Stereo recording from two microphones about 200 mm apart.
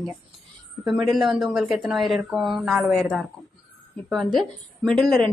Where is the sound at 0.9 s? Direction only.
Centre (ahead or behind).